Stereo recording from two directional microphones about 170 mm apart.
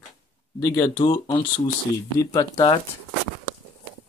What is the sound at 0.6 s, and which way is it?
Speech, 15° left (ahead or behind).